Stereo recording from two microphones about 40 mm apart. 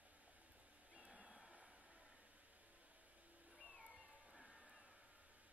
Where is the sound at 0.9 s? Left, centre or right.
Centre.